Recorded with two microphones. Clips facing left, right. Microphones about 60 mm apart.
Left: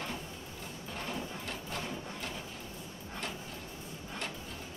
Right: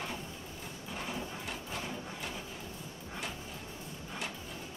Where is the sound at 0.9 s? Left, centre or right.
Centre.